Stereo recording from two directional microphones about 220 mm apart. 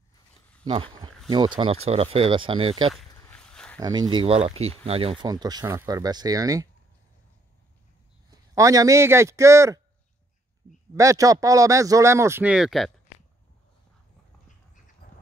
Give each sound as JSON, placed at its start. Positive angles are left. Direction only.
{"t": 0.7, "sound": "speech", "side_deg": -25}
{"t": 2.9, "sound": "a sound", "side_deg": 0}
{"t": 3.8, "sound": "speech", "side_deg": -20}
{"t": 8.3, "sound": "a man's voice", "side_deg": -15}
{"t": 11.0, "sound": "speech", "side_deg": -15}
{"t": 15.0, "sound": "a sound", "side_deg": 40}